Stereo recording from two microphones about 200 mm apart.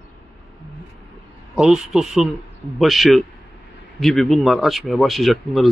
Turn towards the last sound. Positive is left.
turn(degrees=0)  # may be behind; listen again after turning